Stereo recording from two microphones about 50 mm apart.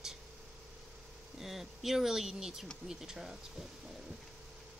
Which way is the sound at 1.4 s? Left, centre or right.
Centre.